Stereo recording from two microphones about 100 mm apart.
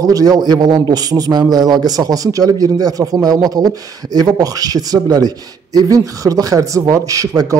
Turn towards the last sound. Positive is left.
turn(degrees=-35)  # may be behind; listen again after turning